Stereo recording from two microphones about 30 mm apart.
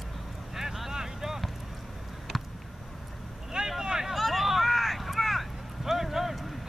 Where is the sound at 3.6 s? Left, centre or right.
Centre.